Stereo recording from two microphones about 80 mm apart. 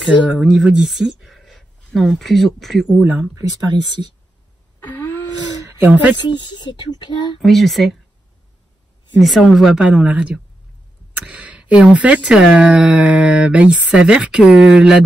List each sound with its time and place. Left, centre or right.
0.3 s speech: centre
3.0 s speech: right
3.5 s speech: right
4.7 s a sound: left
5.6 s speech: right
6.2 s speech: left
7.4 s speech: centre
9.2 s speech: centre